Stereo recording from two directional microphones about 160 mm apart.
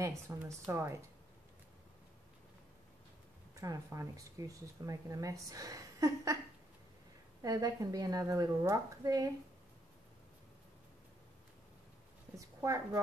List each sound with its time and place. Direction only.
0.4 s a woman's voice: 20° right (ahead or behind)
3.5 s speech: 20° right (ahead or behind)
7.4 s speech: 20° right (ahead or behind)
12.4 s speech: 20° right (ahead or behind)